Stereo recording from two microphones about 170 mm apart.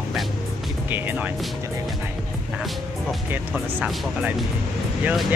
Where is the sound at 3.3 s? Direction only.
10° right (ahead or behind).